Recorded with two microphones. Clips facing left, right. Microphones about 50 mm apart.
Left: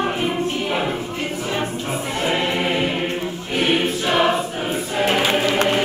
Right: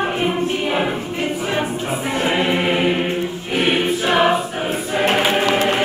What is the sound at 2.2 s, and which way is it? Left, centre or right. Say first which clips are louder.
Choir: right 2 dB; centre.